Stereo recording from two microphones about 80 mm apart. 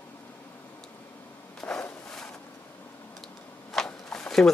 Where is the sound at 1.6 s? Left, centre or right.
Left.